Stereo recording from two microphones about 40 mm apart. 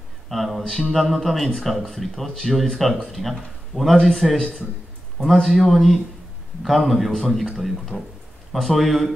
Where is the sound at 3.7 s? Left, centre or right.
Right.